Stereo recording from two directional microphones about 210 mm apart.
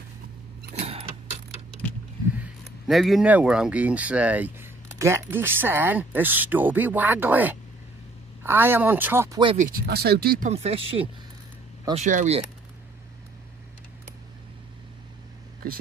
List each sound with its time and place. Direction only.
0.7 s a sound: 30° right (ahead or behind)
2.3 s speech: 5° right (ahead or behind)
9.4 s speech: 25° right (ahead or behind)
9.7 s speech: 45° right (ahead or behind)
10.5 s speech: 30° right (ahead or behind)